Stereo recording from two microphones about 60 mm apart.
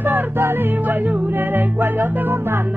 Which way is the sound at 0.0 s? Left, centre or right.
Right.